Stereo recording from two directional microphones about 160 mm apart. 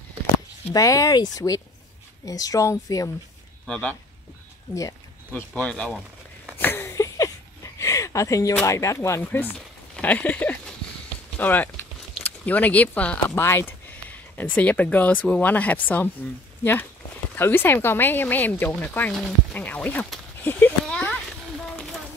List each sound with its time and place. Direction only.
0.7 s speech: 20° left (ahead or behind)
3.6 s speech: 5° left (ahead or behind)
5.3 s speech: 5° left (ahead or behind)
6.6 s a sound: 15° left (ahead or behind)
8.6 s speech: 20° left (ahead or behind)
17.4 s speech: 15° left (ahead or behind)
20.8 s a sound: 5° left (ahead or behind)